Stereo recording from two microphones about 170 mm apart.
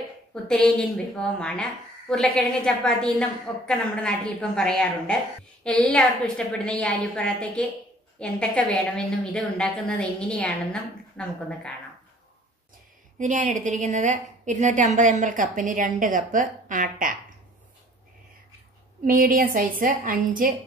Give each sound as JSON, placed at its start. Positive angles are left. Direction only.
{"t": 0.3, "sound": "a woman's voice", "side_deg": 5}
{"t": 13.2, "sound": "a woman's voice", "side_deg": -45}
{"t": 19.0, "sound": "a woman's voice", "side_deg": -55}